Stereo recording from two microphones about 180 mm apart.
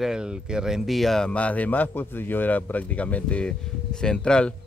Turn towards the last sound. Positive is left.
turn(degrees=5)  # may be behind; listen again after turning